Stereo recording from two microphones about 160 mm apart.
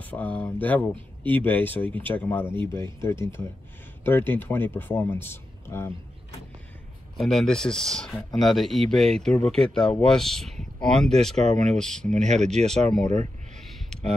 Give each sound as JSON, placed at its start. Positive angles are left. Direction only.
{"t": 0.0, "sound": "a man's voice", "side_deg": 10}
{"t": 7.2, "sound": "speech", "side_deg": 0}
{"t": 11.3, "sound": "speech", "side_deg": -50}
{"t": 11.7, "sound": "speech", "side_deg": 5}
{"t": 12.0, "sound": "speech", "side_deg": -50}
{"t": 12.4, "sound": "speech", "side_deg": 5}
{"t": 13.0, "sound": "speech", "side_deg": -45}